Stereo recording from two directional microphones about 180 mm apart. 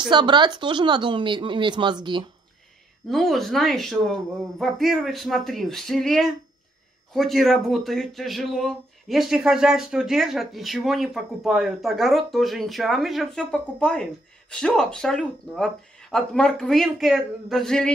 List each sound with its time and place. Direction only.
0.0 s speech: 25° right (ahead or behind)
3.1 s speech: centre (ahead or behind)